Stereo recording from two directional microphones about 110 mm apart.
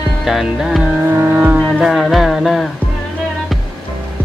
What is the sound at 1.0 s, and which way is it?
Vehicle, 20° right (ahead or behind).